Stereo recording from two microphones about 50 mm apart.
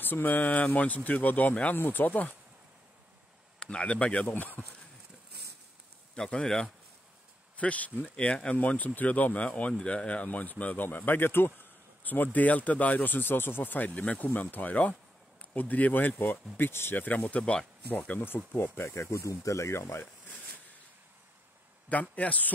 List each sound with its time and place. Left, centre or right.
0.0 s speech: left
1.8 s speech: left
3.5 s speech: centre
6.1 s speech: centre
7.5 s speech: left
11.1 s speech: left
12.0 s speech: left
16.5 s speech: left
16.9 s speech: left
17.3 s speech: centre
17.8 s speech: left
18.2 s speech: left
18.9 s speech: left
21.8 s speech: left